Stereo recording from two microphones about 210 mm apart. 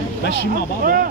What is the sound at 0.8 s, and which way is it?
Speech, 40° right (ahead or behind).